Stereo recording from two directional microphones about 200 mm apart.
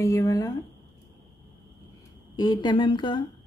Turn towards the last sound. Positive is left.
turn(degrees=25)  # may be behind; listen again after turning